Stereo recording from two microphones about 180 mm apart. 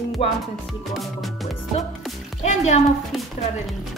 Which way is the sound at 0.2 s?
35° left (ahead or behind).